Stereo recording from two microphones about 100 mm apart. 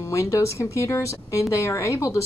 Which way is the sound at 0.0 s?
30° left (ahead or behind).